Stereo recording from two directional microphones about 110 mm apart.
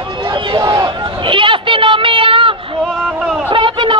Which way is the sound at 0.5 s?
40° right (ahead or behind).